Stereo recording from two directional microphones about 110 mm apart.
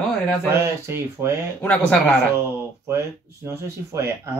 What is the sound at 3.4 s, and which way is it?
Speech, 20° right (ahead or behind).